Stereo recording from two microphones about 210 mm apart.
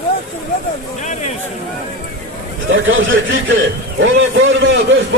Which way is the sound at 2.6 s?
65° right (ahead or behind).